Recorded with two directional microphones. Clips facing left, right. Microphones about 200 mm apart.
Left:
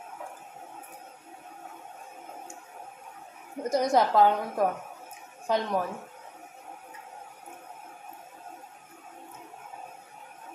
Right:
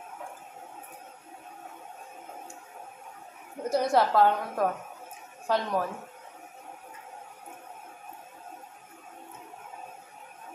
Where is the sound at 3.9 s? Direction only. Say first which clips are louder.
Left 1 dB; 15° left (ahead or behind).